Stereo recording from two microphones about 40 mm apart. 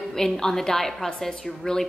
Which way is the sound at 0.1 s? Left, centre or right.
Centre.